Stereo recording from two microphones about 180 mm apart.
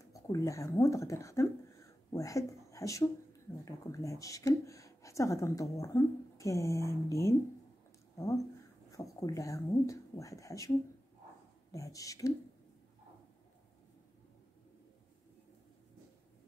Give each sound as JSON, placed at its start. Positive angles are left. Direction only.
{"t": 0.0, "sound": "speech", "side_deg": 20}
{"t": 8.9, "sound": "speech", "side_deg": 20}
{"t": 11.7, "sound": "speech", "side_deg": 20}